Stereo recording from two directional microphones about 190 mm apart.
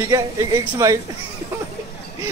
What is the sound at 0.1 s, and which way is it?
Speech, 20° right (ahead or behind).